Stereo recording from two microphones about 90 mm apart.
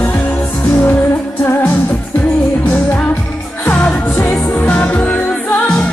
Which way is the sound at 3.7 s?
15° left (ahead or behind).